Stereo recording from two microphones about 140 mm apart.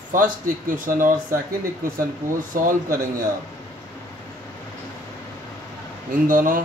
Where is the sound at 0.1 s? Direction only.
75° right (ahead or behind).